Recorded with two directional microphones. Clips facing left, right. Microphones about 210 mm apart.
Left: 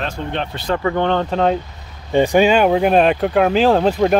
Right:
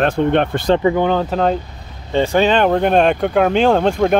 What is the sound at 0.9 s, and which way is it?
Speech, 5° right (ahead or behind).